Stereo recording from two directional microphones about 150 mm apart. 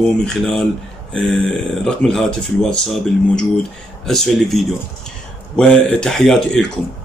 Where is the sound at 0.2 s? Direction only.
5° left (ahead or behind).